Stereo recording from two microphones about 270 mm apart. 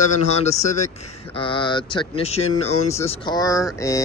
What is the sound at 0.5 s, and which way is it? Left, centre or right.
Speech, left.